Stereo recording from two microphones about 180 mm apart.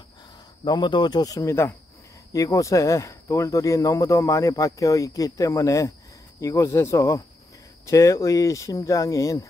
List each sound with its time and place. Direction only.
0.7 s speech: 25° left (ahead or behind)